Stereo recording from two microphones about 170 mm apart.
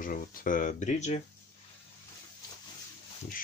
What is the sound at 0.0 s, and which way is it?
Speech, 55° left (ahead or behind).